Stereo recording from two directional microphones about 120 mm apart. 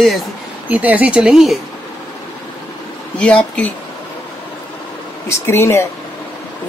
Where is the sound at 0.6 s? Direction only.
15° right (ahead or behind).